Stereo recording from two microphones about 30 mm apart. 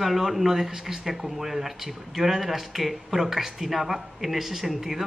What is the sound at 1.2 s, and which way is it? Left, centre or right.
Speech, centre.